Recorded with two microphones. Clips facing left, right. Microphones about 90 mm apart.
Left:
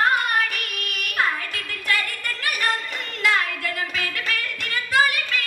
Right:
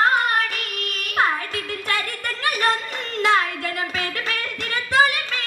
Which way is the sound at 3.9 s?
30° right (ahead or behind).